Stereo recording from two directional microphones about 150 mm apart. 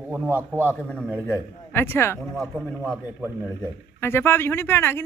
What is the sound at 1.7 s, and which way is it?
Speech, 15° left (ahead or behind).